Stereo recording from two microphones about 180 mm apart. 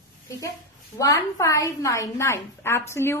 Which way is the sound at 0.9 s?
20° left (ahead or behind).